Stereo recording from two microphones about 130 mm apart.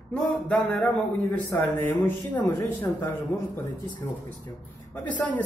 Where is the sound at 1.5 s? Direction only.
20° left (ahead or behind).